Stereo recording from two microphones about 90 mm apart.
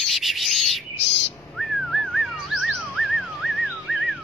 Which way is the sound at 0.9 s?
90° left.